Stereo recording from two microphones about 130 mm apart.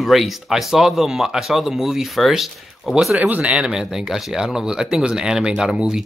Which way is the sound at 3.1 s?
10° right (ahead or behind).